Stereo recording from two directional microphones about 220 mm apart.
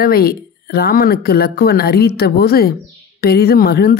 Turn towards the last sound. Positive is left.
turn(degrees=45)  # may be behind; listen again after turning